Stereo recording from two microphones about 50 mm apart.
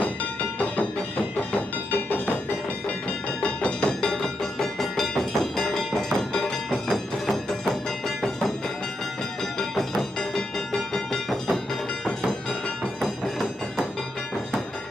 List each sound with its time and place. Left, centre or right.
3.4 s music: centre
4.1 s music: centre
10.3 s music: centre